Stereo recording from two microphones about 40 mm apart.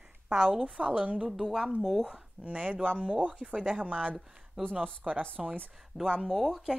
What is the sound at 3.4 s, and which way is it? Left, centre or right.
Speech, centre.